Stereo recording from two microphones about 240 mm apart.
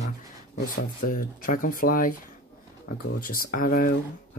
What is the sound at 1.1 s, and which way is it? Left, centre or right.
Speech, left.